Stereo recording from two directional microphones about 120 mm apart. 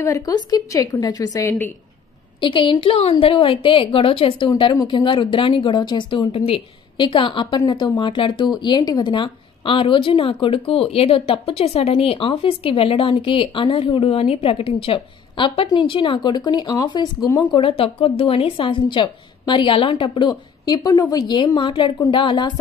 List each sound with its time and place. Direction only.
0.0 s speech: 30° left (ahead or behind)
2.4 s speech: 45° left (ahead or behind)
20.2 s a woman's voice: 35° left (ahead or behind)